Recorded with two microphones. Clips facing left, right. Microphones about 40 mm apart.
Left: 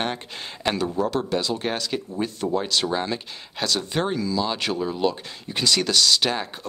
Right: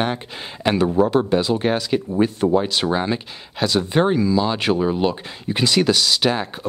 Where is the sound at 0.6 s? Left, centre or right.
Right.